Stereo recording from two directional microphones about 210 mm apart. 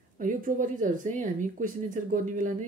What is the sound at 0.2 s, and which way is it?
Speech, 40° right (ahead or behind).